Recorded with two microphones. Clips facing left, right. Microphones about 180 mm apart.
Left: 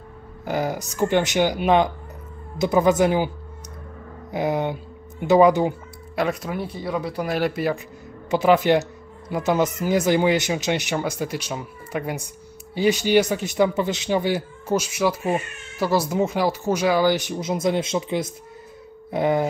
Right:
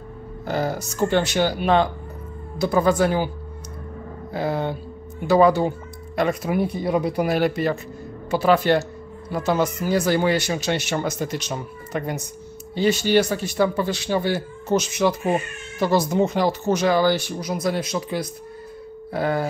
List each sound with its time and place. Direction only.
0.5 s speech: 15° left (ahead or behind)
4.3 s speech: 15° left (ahead or behind)
6.1 s speech: 5° left (ahead or behind)
6.5 s speech: 15° right (ahead or behind)
7.2 s speech: centre (ahead or behind); by 19.4 s 20° left (ahead or behind)